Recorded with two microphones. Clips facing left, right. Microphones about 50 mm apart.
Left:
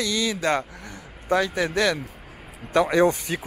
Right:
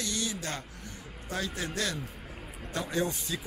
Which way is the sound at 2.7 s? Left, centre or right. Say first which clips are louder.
Left 13 dB; left.